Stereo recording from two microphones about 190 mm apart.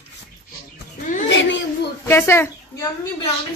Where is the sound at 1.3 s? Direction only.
75° left (ahead or behind).